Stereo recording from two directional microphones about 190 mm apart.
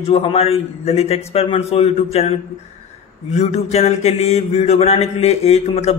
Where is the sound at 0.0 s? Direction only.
30° left (ahead or behind).